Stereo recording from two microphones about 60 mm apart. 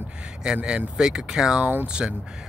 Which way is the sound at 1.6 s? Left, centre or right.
Right.